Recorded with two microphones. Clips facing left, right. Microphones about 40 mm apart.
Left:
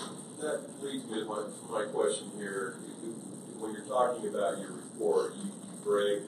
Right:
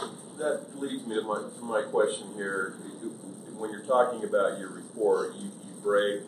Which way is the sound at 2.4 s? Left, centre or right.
Right.